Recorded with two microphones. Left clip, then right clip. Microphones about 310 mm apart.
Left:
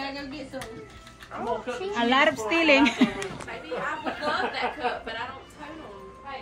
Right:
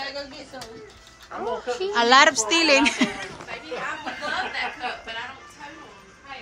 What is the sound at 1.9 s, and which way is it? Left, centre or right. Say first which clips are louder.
A woman's voice: right 6 dB; centre.